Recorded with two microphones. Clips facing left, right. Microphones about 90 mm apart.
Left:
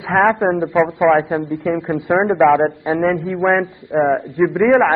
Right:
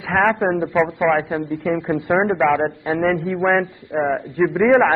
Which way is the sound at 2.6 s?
15° left (ahead or behind).